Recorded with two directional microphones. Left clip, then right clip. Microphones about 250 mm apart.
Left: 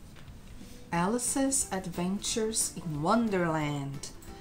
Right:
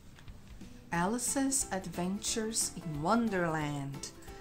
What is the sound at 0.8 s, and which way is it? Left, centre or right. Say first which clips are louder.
Speech: left 3 dB; right.